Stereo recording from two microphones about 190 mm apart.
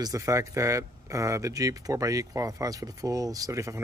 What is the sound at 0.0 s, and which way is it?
Speech, 15° right (ahead or behind).